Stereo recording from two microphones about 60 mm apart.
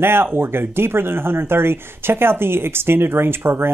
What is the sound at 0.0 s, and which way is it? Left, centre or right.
Speech, right.